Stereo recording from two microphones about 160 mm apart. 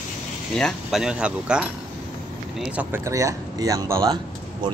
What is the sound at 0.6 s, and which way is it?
Speech, centre (ahead or behind).